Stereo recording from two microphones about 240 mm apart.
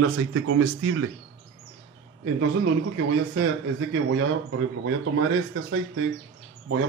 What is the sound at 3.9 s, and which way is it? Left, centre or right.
A man's voice, right.